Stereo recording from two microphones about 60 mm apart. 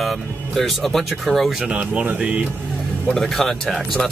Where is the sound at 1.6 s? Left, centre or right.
Right.